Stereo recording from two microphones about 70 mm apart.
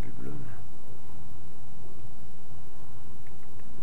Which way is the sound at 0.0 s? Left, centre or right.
Centre.